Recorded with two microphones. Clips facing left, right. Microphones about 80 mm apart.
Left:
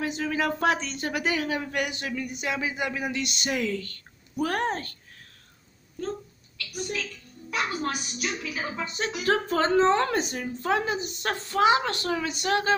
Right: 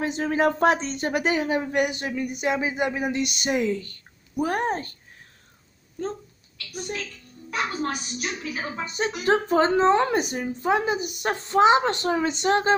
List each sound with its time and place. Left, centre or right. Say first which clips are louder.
0.0 s speech: right 5 dB; right
7.5 s a woman's voice: right 1 dB; right
9.2 s a woman's voice: right 4 dB; right